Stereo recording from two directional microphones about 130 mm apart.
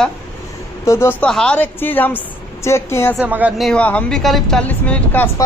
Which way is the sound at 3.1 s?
15° right (ahead or behind).